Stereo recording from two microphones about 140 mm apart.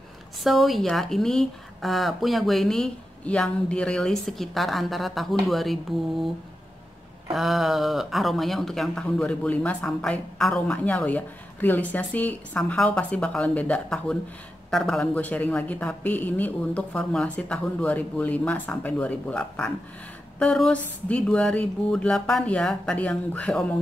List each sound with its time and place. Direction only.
0.4 s a woman's voice: centre (ahead or behind)
7.3 s speech: centre (ahead or behind)